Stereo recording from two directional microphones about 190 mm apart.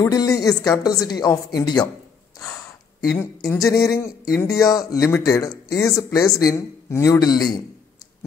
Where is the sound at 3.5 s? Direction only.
15° left (ahead or behind).